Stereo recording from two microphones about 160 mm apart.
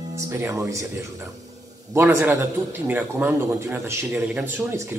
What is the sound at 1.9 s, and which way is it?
A man's voice, 15° right (ahead or behind).